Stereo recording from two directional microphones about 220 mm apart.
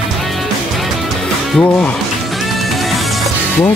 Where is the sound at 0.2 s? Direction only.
Centre (ahead or behind).